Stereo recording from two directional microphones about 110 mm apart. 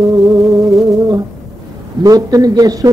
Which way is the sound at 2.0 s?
35° right (ahead or behind).